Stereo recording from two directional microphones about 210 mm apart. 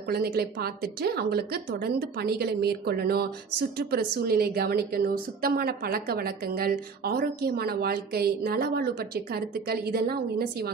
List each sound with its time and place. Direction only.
0.1 s a woman's voice: 50° right (ahead or behind)